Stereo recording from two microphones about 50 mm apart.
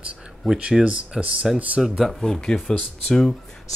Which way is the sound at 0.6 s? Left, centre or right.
Centre.